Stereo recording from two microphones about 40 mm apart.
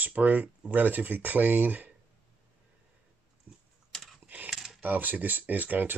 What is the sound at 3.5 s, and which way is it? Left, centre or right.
Typing, right.